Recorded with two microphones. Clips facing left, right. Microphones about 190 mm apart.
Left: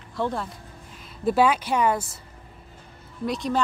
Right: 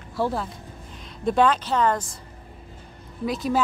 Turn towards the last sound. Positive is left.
turn(degrees=-5)  # may be behind; listen again after turning